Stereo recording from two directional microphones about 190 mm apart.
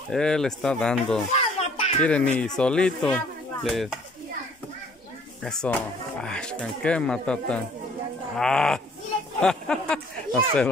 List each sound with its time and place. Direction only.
0.1 s speech: 5° left (ahead or behind)
1.3 s a sound: 35° left (ahead or behind)
2.0 s speech: 5° left (ahead or behind)
5.4 s speech: 5° left (ahead or behind)